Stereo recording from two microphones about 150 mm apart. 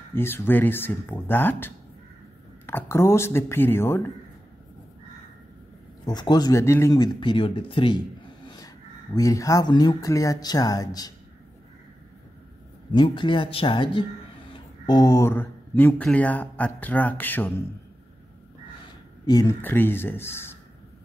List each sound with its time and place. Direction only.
0.1 s speech: 15° left (ahead or behind)
6.0 s speech: 30° left (ahead or behind)
7.2 s speech: 35° left (ahead or behind)
12.9 s speech: 35° left (ahead or behind); by 17.6 s 10° left (ahead or behind)
19.2 s speech: 25° left (ahead or behind)
19.6 s speech: 15° left (ahead or behind)